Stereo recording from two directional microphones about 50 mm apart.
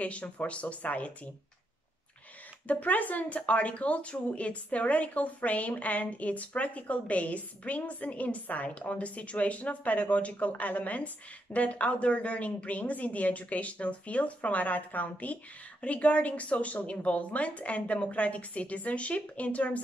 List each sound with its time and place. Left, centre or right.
0.0 s speech: left
2.7 s speech: left